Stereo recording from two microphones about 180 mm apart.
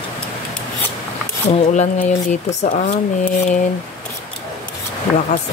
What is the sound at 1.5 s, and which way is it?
Speech, 40° left (ahead or behind).